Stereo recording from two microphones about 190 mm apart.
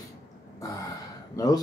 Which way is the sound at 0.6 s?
20° left (ahead or behind).